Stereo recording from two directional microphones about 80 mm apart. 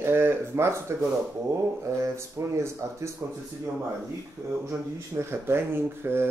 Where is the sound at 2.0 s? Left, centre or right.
Right.